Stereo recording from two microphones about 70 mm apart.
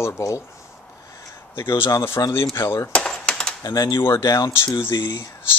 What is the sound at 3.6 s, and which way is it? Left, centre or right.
Speech, left.